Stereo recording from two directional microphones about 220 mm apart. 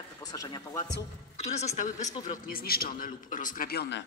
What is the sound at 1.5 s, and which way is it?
A man's voice, 30° left (ahead or behind).